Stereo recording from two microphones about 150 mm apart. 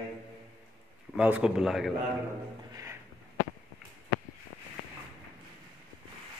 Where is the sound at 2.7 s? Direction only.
20° right (ahead or behind).